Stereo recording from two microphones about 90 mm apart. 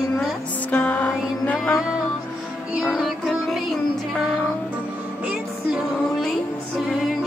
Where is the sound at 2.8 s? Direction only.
Centre (ahead or behind).